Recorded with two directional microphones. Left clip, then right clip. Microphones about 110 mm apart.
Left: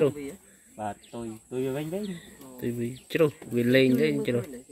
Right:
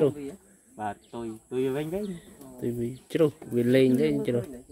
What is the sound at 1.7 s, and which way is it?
Speech, centre (ahead or behind).